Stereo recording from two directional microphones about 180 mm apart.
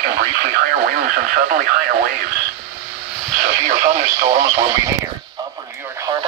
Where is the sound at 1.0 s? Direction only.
50° right (ahead or behind).